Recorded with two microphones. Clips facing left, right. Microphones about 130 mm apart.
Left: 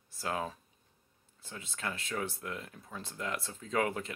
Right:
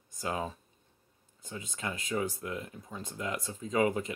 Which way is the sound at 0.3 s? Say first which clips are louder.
Right 1 dB; centre (ahead or behind).